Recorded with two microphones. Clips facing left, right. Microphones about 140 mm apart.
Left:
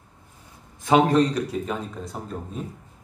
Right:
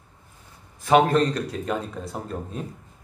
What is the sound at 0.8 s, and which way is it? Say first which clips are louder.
Speech: even; 15° left (ahead or behind).